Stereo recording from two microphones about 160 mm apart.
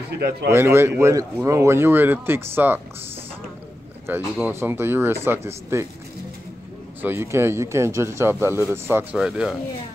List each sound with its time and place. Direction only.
0.5 s speech: 15° right (ahead or behind)
4.1 s speech: 15° right (ahead or behind)
7.0 s speech: 15° right (ahead or behind)